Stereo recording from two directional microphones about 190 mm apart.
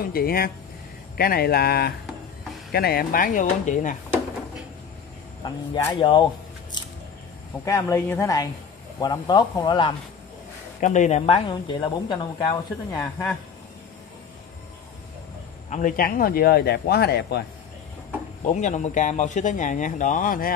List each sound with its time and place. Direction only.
0.0 s speech: 50° left (ahead or behind)
5.4 s a woman's voice: 15° left (ahead or behind)
5.9 s speech: 25° left (ahead or behind)
7.6 s a woman's voice: 15° left (ahead or behind)
10.8 s speech: 40° left (ahead or behind); by 13.0 s 20° left (ahead or behind)
13.0 s a woman's voice: 10° left (ahead or behind)
15.7 s speech: 45° left (ahead or behind)
18.5 s a man's voice: 40° left (ahead or behind)